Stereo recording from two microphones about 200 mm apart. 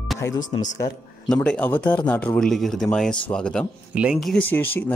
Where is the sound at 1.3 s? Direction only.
5° left (ahead or behind).